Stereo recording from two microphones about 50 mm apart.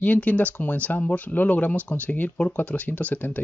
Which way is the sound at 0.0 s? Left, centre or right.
Left.